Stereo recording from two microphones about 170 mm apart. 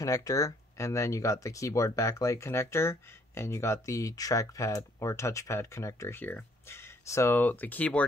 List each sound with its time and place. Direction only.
0.0 s speech: 20° left (ahead or behind)